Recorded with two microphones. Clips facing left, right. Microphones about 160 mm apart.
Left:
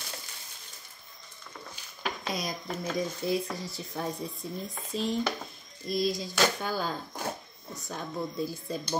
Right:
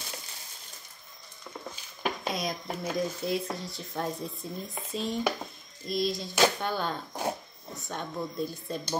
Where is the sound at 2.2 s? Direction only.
Centre (ahead or behind).